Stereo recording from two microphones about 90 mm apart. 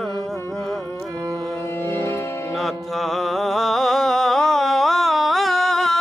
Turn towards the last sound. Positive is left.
turn(degrees=0)  # may be behind; listen again after turning